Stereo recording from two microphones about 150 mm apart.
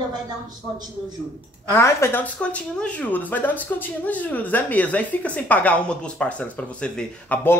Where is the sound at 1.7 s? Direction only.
20° left (ahead or behind).